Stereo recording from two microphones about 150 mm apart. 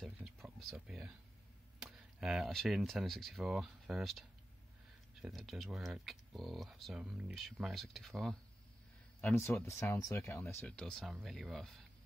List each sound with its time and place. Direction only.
0.0 s a sound: centre (ahead or behind)
1.8 s speech: 5° right (ahead or behind)
9.2 s speech: 15° left (ahead or behind)
10.6 s speech: 5° left (ahead or behind)